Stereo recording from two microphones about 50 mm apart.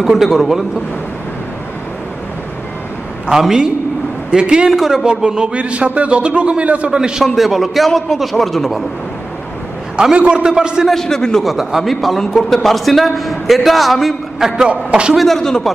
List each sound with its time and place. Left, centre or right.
0.0 s a man's voice: centre
3.3 s a man's voice: centre
4.7 s a man's voice: centre
5.0 s a man's voice: centre
7.0 s a man's voice: centre
7.3 s a man's voice: centre
10.1 s a man's voice: centre
10.9 s a man's voice: centre
11.4 s a man's voice: centre
14.7 s a man's voice: right
15.1 s a man's voice: centre